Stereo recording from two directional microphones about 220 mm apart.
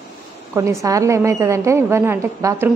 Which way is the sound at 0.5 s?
15° right (ahead or behind).